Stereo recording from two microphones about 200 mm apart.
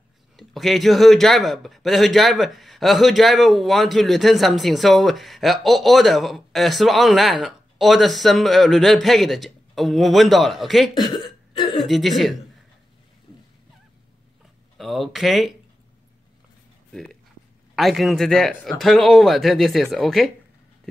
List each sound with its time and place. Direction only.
0.4 s a man's voice: centre (ahead or behind)
11.5 s a sound: 20° left (ahead or behind)
11.8 s a man's voice: centre (ahead or behind)
14.8 s a man's voice: centre (ahead or behind)
16.9 s a man's voice: centre (ahead or behind)